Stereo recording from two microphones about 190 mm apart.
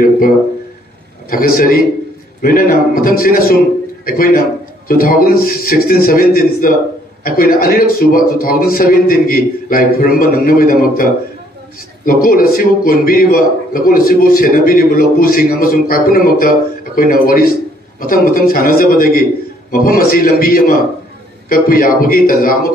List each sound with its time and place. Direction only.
1.3 s a man's voice: 50° left (ahead or behind)